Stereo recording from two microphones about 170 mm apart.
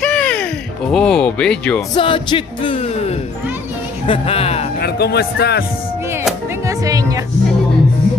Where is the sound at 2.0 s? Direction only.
30° left (ahead or behind).